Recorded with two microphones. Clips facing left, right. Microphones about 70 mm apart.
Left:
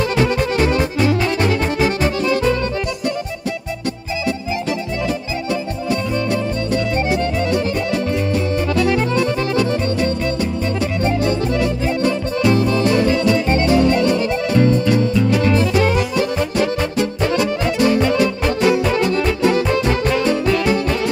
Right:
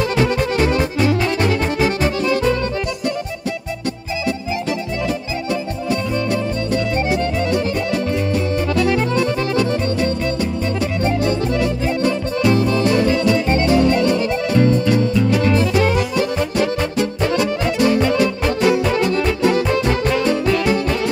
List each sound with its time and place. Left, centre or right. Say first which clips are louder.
0.0 s music: even; left
5.5 s music: even; left
8.7 s music: even; left